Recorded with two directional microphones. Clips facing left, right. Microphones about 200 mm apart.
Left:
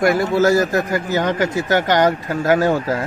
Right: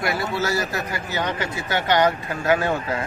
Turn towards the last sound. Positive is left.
turn(degrees=40)  # may be behind; listen again after turning